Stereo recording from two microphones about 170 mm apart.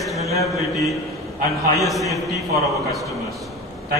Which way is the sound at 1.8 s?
Centre (ahead or behind).